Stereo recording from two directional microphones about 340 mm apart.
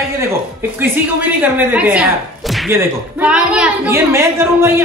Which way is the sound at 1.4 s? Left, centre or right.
Centre.